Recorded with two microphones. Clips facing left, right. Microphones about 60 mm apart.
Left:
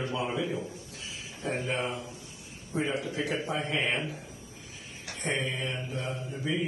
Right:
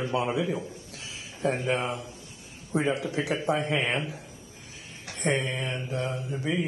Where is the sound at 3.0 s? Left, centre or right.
Right.